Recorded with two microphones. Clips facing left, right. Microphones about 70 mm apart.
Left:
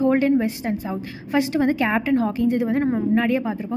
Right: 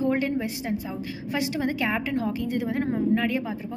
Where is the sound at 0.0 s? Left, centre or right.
Left.